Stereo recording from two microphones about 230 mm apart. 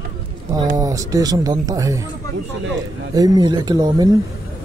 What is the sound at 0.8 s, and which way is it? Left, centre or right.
Speech, centre.